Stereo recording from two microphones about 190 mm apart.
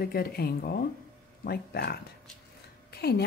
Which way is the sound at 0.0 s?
55° left (ahead or behind).